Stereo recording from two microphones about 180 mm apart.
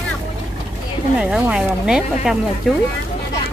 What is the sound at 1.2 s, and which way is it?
Speech, centre (ahead or behind).